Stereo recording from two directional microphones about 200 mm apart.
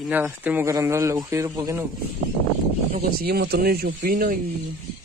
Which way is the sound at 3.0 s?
45° right (ahead or behind).